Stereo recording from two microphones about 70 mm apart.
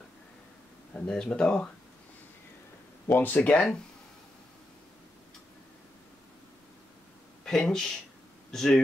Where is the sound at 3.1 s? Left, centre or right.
Left.